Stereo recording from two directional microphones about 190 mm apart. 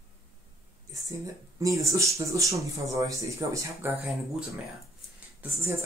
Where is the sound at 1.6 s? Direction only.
15° right (ahead or behind).